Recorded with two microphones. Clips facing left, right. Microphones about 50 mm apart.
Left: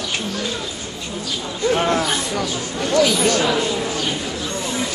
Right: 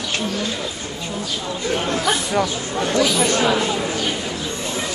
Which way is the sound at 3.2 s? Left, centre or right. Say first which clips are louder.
Even; right.